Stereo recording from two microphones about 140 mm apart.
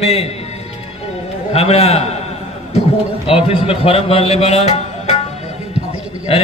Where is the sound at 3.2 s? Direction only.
40° left (ahead or behind).